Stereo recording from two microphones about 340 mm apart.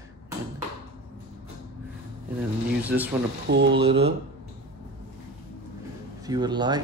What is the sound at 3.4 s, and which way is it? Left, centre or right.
Speech, right.